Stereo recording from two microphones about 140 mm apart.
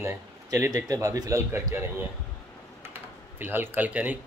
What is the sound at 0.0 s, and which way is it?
A man's voice, 15° right (ahead or behind).